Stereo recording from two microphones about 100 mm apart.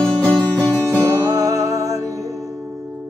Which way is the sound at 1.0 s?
30° right (ahead or behind).